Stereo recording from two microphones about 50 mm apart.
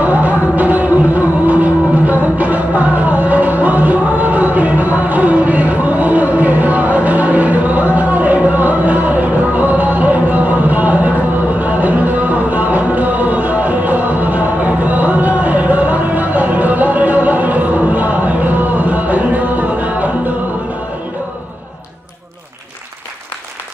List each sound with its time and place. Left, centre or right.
0.0 s music: right
12.4 s music: right